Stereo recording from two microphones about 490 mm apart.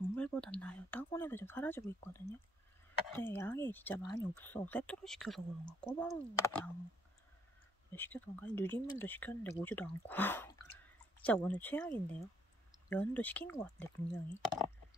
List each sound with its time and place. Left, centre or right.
0.1 s a sound: centre
3.3 s speech: centre
7.9 s speech: centre
12.9 s speech: centre